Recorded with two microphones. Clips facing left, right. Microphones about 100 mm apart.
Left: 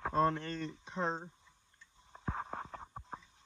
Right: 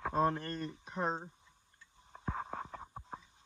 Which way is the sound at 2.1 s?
5° left (ahead or behind).